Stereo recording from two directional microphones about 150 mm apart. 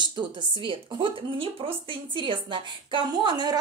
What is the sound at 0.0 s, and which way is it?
Speech, 30° right (ahead or behind).